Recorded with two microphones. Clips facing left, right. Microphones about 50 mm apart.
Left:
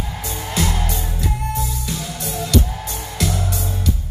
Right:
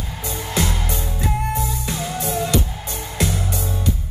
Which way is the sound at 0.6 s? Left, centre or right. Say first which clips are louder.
Left 1 dB; right.